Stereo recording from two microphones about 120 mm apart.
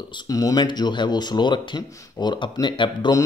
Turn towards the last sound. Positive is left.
turn(degrees=40)  # may be behind; listen again after turning